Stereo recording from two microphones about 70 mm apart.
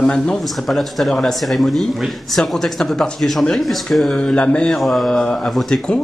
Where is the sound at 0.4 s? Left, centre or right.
Centre.